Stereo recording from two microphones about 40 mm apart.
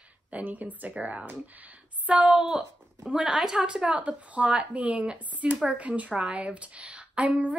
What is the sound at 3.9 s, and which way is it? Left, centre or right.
A woman's voice, right.